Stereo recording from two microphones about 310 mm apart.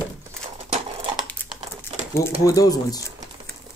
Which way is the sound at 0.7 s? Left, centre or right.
Centre.